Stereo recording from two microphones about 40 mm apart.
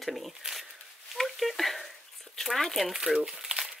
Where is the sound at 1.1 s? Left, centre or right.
Centre.